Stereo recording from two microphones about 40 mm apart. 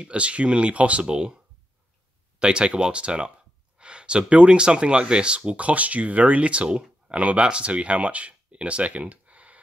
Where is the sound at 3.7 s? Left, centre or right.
Right.